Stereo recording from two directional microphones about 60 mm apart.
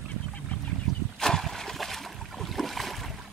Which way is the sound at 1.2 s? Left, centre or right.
Centre.